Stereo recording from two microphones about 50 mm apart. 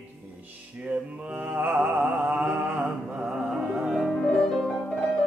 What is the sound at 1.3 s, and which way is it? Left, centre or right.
Mantra, right.